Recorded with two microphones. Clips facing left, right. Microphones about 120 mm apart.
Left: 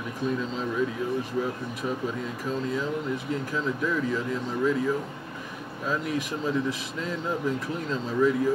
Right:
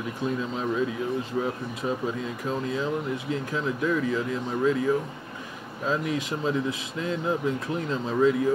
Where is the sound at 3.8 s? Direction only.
20° right (ahead or behind).